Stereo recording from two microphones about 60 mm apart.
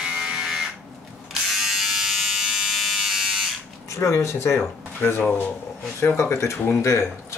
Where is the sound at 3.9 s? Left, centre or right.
Left.